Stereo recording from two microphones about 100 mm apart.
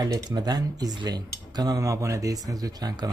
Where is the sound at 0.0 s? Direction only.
40° right (ahead or behind).